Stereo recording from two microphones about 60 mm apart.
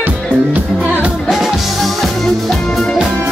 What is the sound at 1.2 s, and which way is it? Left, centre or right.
Music, centre.